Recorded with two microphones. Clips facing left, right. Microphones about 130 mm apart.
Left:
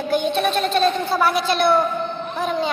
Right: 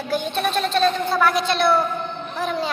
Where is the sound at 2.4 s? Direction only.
Centre (ahead or behind).